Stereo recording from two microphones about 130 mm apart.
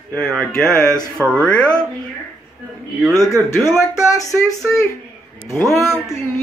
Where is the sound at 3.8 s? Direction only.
25° left (ahead or behind).